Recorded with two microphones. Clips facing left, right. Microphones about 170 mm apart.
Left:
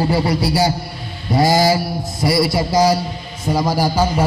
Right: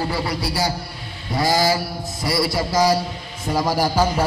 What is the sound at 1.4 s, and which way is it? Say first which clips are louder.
Mantra: left 5 dB; 25° left (ahead or behind).